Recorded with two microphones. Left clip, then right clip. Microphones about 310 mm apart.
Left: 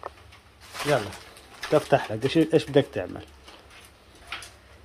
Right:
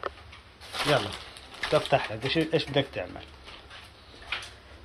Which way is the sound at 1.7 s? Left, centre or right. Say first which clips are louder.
Left 3 dB; left.